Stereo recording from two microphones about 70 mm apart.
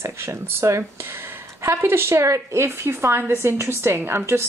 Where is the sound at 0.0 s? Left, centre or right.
Right.